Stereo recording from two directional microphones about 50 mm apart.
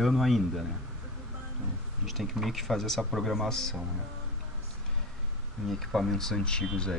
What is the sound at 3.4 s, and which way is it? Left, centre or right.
Speech, centre.